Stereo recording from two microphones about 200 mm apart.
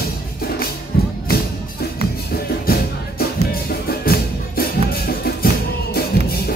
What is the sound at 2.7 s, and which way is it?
Music, 50° left (ahead or behind).